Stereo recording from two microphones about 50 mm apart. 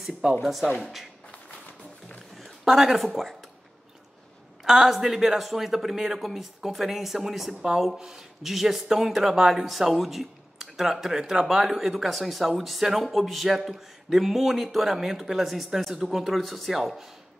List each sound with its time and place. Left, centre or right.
0.4 s speech: centre
2.0 s music: centre
2.6 s speech: centre
4.6 s speech: centre